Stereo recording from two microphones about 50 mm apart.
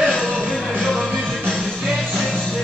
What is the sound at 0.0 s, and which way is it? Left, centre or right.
Music, centre.